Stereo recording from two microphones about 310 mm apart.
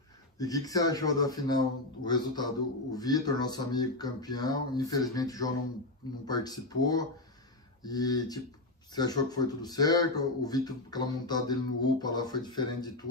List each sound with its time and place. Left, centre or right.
0.4 s a man's voice: centre